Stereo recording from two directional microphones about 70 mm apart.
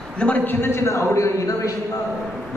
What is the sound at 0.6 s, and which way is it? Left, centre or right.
A man's voice, left.